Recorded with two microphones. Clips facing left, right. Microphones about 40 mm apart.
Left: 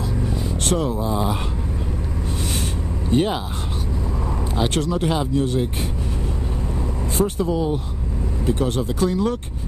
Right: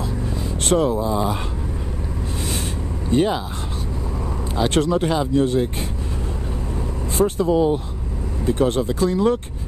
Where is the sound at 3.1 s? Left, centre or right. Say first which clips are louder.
Right 1 dB; centre.